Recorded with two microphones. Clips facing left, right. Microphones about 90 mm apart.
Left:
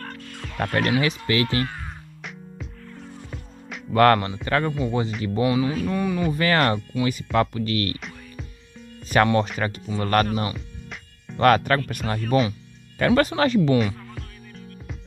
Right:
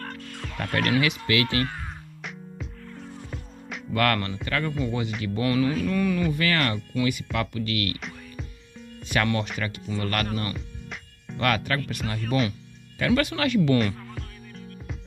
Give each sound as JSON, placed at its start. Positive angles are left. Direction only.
{"t": 0.6, "sound": "speech", "side_deg": 35}
{"t": 2.2, "sound": "music", "side_deg": 0}
{"t": 3.9, "sound": "speech", "side_deg": 30}
{"t": 6.2, "sound": "speech", "side_deg": 35}
{"t": 9.1, "sound": "speech", "side_deg": 35}
{"t": 11.3, "sound": "speech", "side_deg": 40}
{"t": 13.7, "sound": "music", "side_deg": 0}